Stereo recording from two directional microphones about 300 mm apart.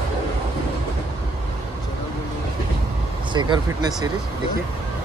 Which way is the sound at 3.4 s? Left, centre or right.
Centre.